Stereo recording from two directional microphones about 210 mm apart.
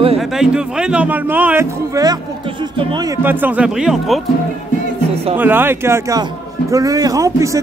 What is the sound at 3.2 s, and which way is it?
Speech, 10° right (ahead or behind).